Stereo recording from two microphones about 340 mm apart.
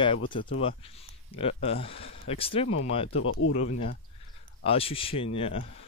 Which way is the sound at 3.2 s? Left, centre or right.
Left.